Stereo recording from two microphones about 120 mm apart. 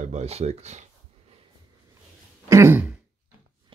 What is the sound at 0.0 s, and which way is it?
Speech, 70° right (ahead or behind).